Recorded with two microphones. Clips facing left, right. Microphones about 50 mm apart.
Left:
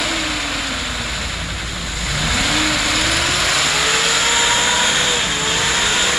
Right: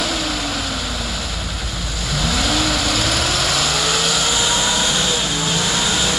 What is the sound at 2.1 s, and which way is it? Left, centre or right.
Vehicle, centre.